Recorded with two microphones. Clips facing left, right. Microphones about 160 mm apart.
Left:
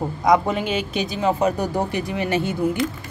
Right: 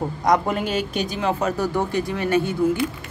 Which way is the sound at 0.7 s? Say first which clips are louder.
Even; 40° right (ahead or behind).